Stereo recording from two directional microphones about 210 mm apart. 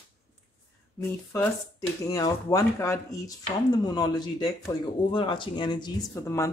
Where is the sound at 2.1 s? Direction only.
15° left (ahead or behind).